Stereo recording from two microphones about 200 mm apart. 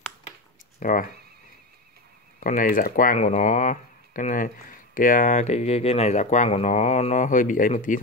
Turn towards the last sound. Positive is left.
turn(degrees=40)  # may be behind; listen again after turning